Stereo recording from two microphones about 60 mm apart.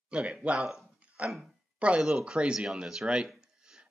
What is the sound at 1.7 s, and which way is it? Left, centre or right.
Speech, centre.